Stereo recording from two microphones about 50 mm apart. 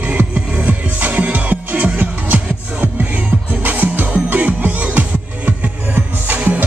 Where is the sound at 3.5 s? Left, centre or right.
Right.